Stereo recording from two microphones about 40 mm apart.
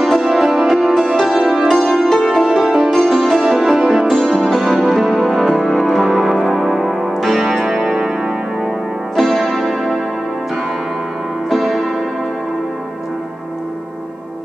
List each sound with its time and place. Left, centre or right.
0.0 s music: centre
4.2 s music: centre
4.6 s music: centre
6.2 s music: centre
9.1 s music: centre
11.5 s music: centre